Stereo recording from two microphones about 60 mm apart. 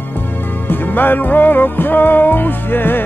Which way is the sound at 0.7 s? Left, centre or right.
Left.